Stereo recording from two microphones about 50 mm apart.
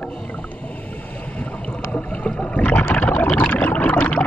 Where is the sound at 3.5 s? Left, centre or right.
Left.